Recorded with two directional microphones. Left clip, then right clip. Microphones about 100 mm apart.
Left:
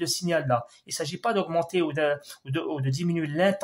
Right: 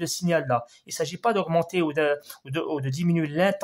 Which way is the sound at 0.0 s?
30° right (ahead or behind).